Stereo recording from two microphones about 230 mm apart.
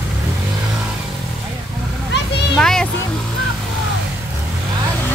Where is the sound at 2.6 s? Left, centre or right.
Centre.